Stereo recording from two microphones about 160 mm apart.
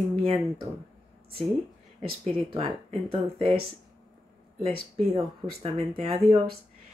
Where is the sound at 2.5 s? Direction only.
40° right (ahead or behind).